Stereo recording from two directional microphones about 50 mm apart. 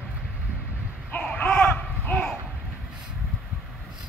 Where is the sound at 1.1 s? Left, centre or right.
Left.